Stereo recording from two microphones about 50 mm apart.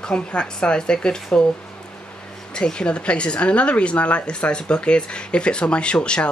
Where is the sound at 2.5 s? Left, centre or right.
Centre.